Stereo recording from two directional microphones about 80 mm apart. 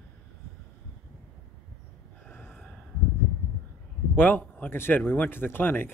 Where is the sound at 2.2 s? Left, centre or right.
Centre.